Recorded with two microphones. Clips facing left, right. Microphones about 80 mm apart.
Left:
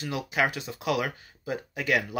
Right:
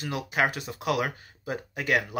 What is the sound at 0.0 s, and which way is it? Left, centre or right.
Speech, right.